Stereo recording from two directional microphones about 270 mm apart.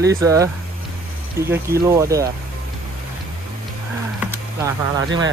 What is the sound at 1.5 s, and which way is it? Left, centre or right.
Speech, centre.